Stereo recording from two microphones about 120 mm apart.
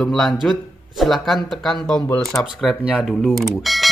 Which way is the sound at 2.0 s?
25° left (ahead or behind).